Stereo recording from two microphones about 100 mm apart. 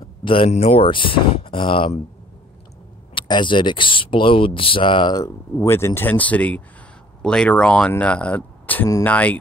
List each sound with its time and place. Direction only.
0.2 s speech: 60° left (ahead or behind)
3.2 s speech: 55° left (ahead or behind)
5.2 s speech: 30° left (ahead or behind)